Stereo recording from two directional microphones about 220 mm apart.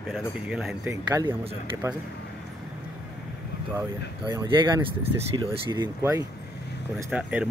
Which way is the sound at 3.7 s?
15° right (ahead or behind).